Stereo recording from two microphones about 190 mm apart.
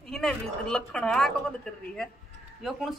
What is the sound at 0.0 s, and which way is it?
A woman's voice, 5° left (ahead or behind).